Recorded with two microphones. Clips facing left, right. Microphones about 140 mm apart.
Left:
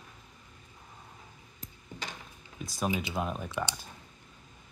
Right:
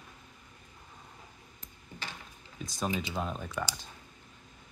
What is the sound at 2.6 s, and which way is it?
Speech, centre (ahead or behind).